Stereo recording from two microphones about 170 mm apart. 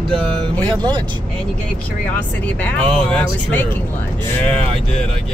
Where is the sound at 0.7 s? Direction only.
25° right (ahead or behind).